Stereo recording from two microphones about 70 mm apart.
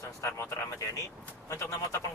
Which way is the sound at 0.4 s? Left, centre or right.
Left.